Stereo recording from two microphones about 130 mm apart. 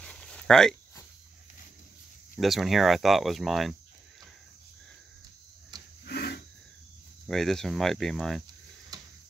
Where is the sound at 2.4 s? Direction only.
Centre (ahead or behind).